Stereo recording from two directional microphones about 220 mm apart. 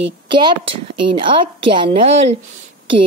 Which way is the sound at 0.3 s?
20° right (ahead or behind).